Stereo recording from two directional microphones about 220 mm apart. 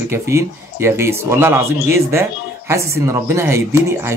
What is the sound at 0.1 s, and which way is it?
Speech, 10° right (ahead or behind).